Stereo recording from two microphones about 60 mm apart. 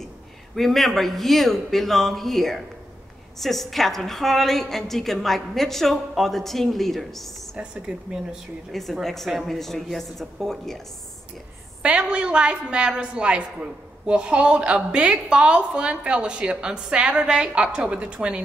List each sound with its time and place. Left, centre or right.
0.6 s a woman's voice: centre
7.5 s a woman's voice: centre
9.0 s a woman's voice: centre
11.8 s a woman's voice: centre